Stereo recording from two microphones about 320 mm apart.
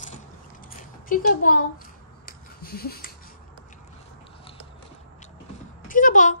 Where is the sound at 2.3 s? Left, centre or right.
Left.